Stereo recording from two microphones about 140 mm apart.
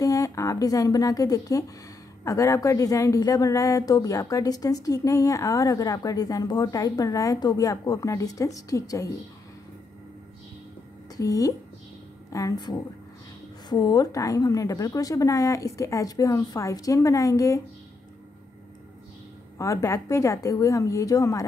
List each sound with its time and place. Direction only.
0.0 s a woman's voice: 25° left (ahead or behind)
11.1 s a woman's voice: 25° left (ahead or behind)
19.6 s a woman's voice: 20° left (ahead or behind)